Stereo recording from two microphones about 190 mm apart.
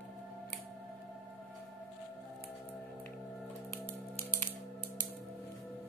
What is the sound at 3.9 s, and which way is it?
Music, 15° left (ahead or behind).